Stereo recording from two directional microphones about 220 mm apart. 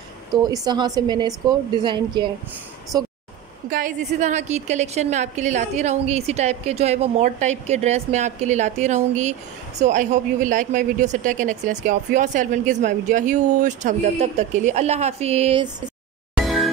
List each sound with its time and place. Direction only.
0.3 s speech: 20° right (ahead or behind)
3.7 s speech: 35° right (ahead or behind)
16.3 s music: centre (ahead or behind)